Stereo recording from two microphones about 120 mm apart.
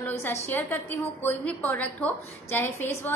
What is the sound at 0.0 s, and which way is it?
A woman's voice, 15° left (ahead or behind).